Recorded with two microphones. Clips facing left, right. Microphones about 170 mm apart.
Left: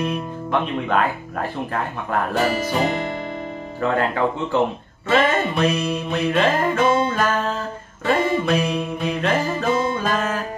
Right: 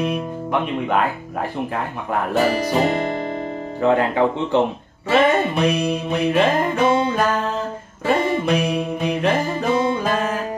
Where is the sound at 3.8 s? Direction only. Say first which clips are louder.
Right 3 dB; 20° right (ahead or behind).